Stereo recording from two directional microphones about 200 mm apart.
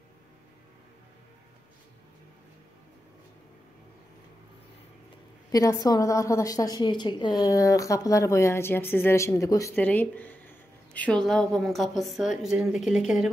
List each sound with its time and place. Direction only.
5.5 s a woman's voice: 20° left (ahead or behind); by 13.3 s 5° right (ahead or behind)